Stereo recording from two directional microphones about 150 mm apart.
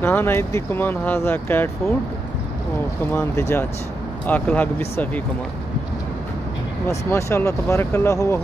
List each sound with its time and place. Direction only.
0.0 s speech: 15° left (ahead or behind)
3.1 s speech: 15° left (ahead or behind)
6.9 s speech: 20° left (ahead or behind)